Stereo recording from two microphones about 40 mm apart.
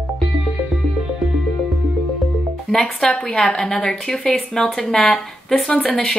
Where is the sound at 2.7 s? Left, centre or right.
Centre.